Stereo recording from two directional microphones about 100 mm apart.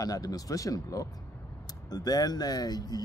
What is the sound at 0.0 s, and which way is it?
Speech, 35° left (ahead or behind).